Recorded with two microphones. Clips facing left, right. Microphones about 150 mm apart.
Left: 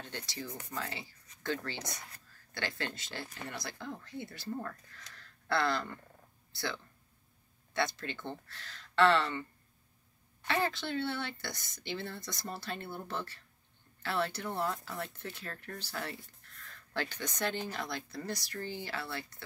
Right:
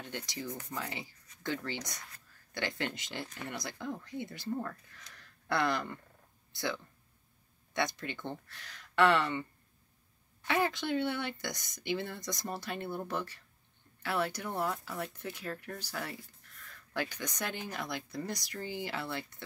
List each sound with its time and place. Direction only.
0.0 s speech: 15° right (ahead or behind)